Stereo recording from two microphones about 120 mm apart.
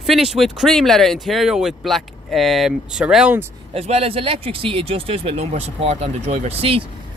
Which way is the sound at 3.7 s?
60° right (ahead or behind).